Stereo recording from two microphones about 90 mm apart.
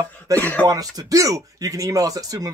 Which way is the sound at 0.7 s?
45° right (ahead or behind).